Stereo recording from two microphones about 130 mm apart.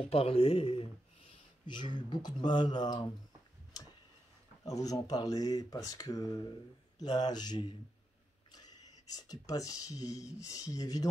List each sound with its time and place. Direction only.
0.0 s speech: 45° left (ahead or behind)
2.0 s speech: 35° left (ahead or behind)
4.6 s speech: 30° left (ahead or behind)